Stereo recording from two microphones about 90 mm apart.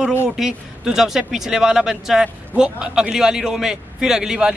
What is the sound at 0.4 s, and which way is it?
Speech, 5° right (ahead or behind).